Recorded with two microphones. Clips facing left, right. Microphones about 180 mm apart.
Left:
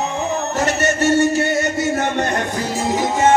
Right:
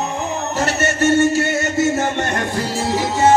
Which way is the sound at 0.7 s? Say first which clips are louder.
Even; 15° left (ahead or behind).